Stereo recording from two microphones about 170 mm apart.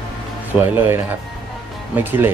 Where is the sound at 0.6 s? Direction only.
15° right (ahead or behind).